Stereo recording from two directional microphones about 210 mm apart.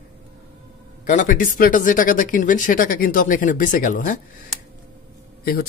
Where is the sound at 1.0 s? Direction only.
40° left (ahead or behind).